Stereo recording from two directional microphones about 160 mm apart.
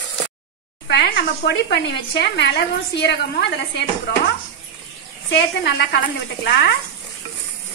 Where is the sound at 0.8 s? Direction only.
90° left.